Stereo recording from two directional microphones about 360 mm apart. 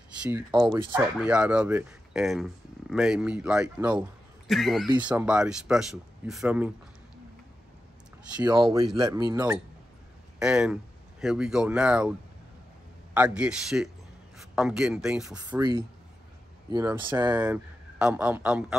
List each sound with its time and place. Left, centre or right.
0.2 s speech: centre
8.4 s speech: centre